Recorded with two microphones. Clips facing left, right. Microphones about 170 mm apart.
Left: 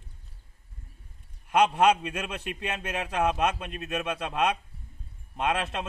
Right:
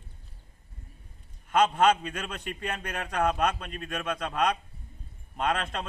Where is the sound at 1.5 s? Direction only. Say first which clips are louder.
Left 1 dB; 10° left (ahead or behind).